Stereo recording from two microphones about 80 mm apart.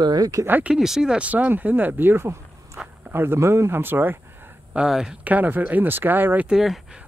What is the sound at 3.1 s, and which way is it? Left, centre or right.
Speech, right.